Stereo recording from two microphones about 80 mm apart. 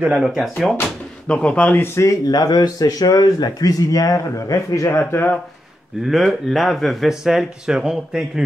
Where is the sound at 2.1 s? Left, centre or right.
Left.